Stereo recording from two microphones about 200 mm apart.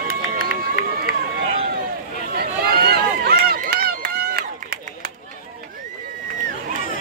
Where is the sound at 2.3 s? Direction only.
50° right (ahead or behind).